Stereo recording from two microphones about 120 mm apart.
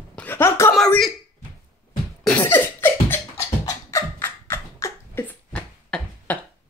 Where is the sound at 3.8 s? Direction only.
20° left (ahead or behind).